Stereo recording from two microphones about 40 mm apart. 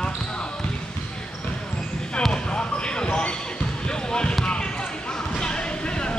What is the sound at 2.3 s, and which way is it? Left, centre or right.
Basketball bounce, left.